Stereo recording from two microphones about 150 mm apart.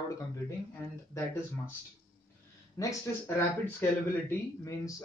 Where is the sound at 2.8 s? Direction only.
20° left (ahead or behind).